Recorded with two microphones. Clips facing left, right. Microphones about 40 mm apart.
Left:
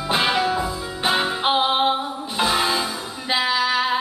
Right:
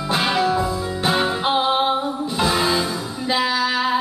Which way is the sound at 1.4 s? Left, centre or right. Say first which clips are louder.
Left 1 dB; left.